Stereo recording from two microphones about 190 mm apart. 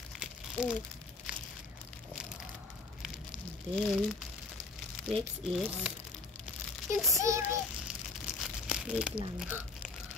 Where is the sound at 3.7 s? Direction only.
5° left (ahead or behind).